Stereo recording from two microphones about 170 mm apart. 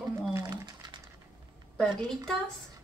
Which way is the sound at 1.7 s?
5° left (ahead or behind).